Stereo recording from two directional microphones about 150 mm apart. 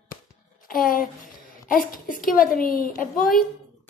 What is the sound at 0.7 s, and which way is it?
A woman's voice, 70° left (ahead or behind).